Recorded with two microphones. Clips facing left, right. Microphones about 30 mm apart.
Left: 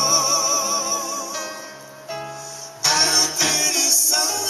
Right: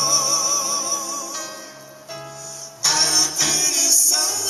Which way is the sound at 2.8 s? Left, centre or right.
Centre.